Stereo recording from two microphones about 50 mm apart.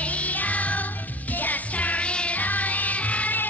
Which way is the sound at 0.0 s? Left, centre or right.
Left.